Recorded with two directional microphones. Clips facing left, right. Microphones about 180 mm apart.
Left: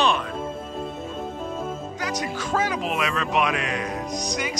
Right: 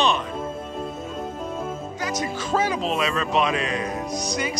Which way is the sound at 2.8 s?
15° left (ahead or behind).